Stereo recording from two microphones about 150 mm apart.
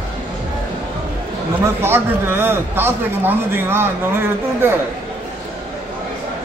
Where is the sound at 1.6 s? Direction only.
15° right (ahead or behind).